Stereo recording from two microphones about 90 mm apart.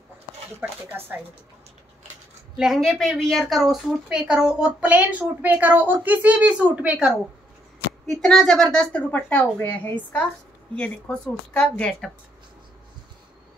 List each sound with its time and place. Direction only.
0.6 s speech: 20° right (ahead or behind)
2.5 s a woman's voice: 5° right (ahead or behind)
8.1 s speech: centre (ahead or behind)